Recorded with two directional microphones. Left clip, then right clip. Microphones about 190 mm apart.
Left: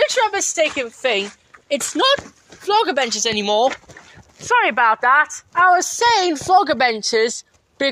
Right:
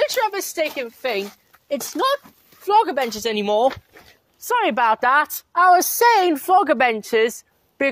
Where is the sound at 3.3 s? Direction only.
20° right (ahead or behind).